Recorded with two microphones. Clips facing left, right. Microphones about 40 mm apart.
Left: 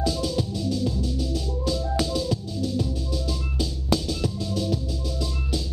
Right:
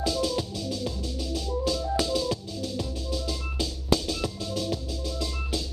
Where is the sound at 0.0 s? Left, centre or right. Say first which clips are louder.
Left 1 dB; centre.